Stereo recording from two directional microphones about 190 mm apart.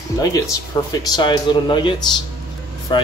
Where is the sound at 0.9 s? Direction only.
20° left (ahead or behind).